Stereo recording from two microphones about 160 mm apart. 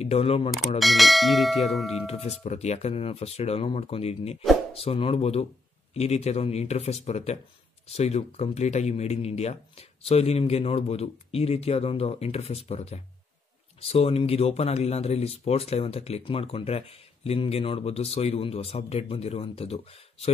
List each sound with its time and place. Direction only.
0.0 s speech: 40° left (ahead or behind)
0.7 s speech: centre (ahead or behind)
2.0 s speech: 40° left (ahead or behind)